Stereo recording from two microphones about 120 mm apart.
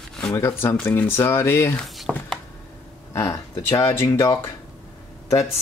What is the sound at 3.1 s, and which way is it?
Speech, 25° left (ahead or behind).